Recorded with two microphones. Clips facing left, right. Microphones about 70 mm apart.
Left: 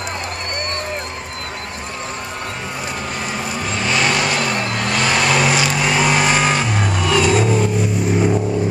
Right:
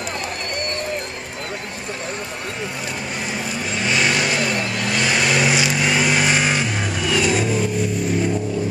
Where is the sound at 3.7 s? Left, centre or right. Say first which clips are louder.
Left 1 dB; centre.